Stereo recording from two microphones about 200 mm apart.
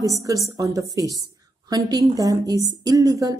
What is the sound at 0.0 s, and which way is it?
A woman's voice, 15° right (ahead or behind).